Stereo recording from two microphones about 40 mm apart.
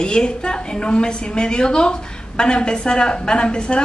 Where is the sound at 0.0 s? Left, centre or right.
Left.